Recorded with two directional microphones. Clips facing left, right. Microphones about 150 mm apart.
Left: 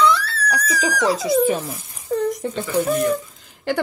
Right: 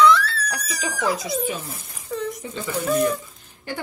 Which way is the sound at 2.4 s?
65° left (ahead or behind).